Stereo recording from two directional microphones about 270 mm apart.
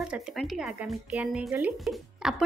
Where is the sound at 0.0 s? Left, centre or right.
Centre.